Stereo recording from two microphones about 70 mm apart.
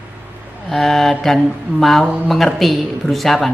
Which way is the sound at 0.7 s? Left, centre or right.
Centre.